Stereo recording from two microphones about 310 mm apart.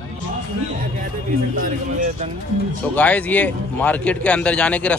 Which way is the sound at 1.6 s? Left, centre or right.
Right.